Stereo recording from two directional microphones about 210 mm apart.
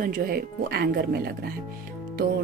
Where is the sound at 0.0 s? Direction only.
45° right (ahead or behind).